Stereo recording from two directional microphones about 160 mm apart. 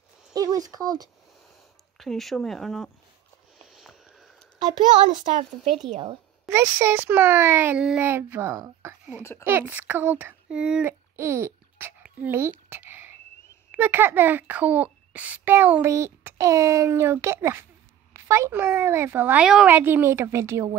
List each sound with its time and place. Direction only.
0.3 s speech: 20° right (ahead or behind)
2.0 s speech: centre (ahead or behind)
3.6 s a sound: centre (ahead or behind)
6.5 s a child's voice: 15° right (ahead or behind)